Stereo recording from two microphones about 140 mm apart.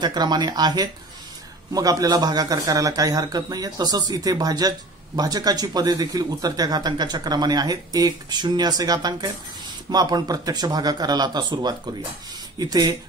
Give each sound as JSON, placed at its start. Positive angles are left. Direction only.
{"t": 0.0, "sound": "a man's voice", "side_deg": -30}